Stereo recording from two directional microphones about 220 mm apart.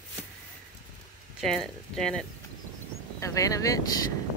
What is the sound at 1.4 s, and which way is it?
Speech, centre (ahead or behind).